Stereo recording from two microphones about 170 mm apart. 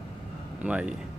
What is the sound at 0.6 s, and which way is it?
Speech, 5° right (ahead or behind).